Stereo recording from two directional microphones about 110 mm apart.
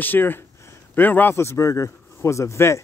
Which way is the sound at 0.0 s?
20° left (ahead or behind).